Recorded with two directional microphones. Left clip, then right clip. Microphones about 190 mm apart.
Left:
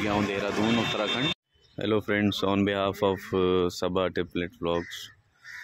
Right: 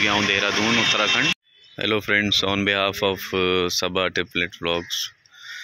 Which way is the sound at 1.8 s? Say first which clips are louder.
Right 6 dB; 10° left (ahead or behind).